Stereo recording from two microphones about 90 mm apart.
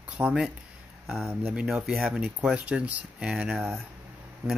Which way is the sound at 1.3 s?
25° right (ahead or behind).